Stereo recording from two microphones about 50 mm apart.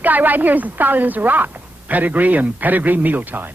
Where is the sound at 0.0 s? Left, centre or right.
Right.